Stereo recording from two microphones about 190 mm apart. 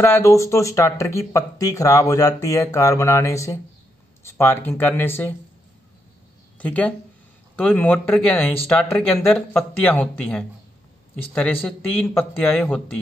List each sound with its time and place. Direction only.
0.0 s speech: 15° left (ahead or behind)
6.6 s speech: 10° left (ahead or behind)
11.6 s speech: 5° left (ahead or behind)